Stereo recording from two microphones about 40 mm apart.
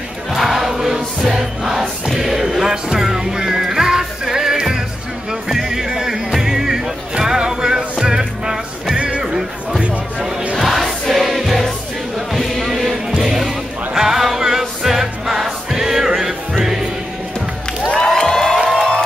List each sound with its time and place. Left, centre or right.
0.3 s a sound: centre
0.7 s music: centre
8.9 s music: right
10.6 s music: centre
12.3 s chant: centre
13.2 s music: centre
17.9 s a sound: centre
18.8 s music: centre